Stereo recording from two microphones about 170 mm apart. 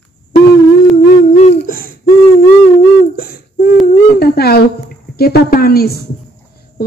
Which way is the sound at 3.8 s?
70° left (ahead or behind).